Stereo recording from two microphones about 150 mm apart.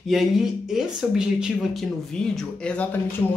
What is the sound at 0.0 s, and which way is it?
Speech, centre (ahead or behind).